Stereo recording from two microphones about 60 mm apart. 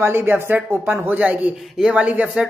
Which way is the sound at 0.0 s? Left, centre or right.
Right.